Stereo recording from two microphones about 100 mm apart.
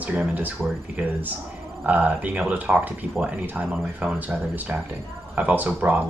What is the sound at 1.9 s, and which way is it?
Speech, 15° right (ahead or behind).